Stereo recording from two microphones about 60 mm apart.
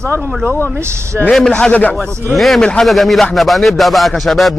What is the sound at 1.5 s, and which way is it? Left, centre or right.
Speech, left.